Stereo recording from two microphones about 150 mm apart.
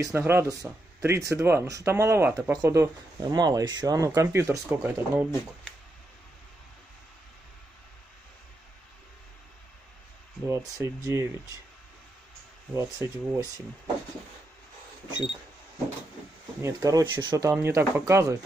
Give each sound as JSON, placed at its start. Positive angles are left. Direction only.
{"t": 0.0, "sound": "speech", "side_deg": -15}
{"t": 10.5, "sound": "speech", "side_deg": -20}
{"t": 12.7, "sound": "speech", "side_deg": -20}
{"t": 16.6, "sound": "speech", "side_deg": -25}
{"t": 17.5, "sound": "speech", "side_deg": -15}